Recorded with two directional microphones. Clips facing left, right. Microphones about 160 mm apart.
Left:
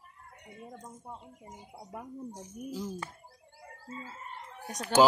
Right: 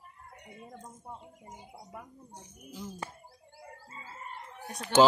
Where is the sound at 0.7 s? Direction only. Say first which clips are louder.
Left 1 dB; centre (ahead or behind).